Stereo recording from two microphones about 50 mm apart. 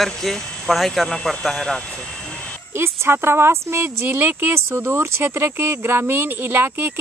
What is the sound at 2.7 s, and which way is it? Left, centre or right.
Speech, right.